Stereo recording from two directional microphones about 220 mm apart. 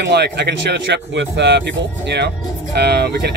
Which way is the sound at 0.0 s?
50° right (ahead or behind).